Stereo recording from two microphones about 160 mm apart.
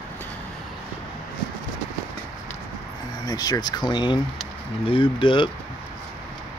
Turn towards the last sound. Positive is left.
turn(degrees=30)  # may be behind; listen again after turning